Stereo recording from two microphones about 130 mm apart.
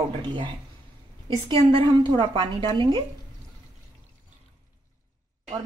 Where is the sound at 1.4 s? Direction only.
45° right (ahead or behind).